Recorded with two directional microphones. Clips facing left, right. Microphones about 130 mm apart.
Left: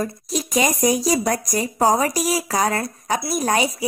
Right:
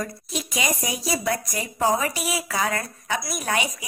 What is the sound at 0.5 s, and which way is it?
A woman's voice, 45° left (ahead or behind).